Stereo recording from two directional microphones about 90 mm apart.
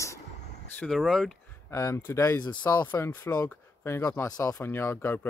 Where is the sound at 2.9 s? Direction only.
20° left (ahead or behind).